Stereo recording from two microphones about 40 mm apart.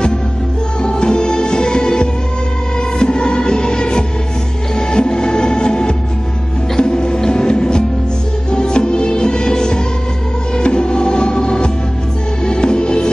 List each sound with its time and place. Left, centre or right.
0.8 s music: left